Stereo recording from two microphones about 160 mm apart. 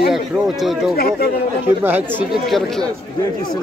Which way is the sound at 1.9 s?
10° right (ahead or behind).